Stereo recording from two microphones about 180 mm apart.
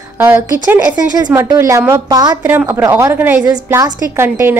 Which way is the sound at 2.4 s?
10° right (ahead or behind).